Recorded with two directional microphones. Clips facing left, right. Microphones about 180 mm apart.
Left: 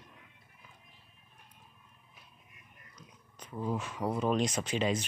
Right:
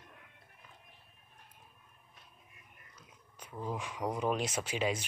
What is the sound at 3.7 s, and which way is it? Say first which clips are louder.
Speech: left 3 dB; 15° right (ahead or behind).